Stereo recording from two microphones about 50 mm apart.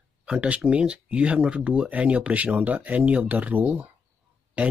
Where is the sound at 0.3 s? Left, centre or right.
Right.